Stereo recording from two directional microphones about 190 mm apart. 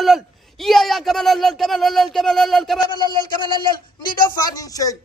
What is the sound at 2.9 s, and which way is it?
A man's voice, 20° left (ahead or behind).